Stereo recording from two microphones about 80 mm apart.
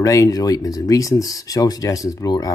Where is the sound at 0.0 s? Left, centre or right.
Left.